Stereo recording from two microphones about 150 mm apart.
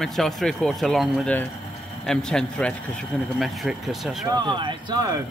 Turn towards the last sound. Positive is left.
turn(degrees=-25)  # may be behind; listen again after turning